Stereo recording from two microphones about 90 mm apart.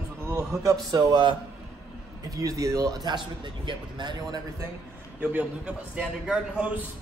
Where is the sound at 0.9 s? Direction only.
55° right (ahead or behind).